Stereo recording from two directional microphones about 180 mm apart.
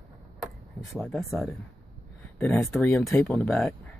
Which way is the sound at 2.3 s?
10° left (ahead or behind).